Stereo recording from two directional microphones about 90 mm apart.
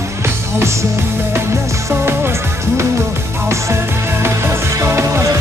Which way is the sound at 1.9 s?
25° right (ahead or behind).